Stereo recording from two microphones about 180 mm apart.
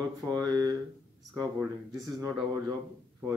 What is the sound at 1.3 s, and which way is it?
Speech, 15° right (ahead or behind).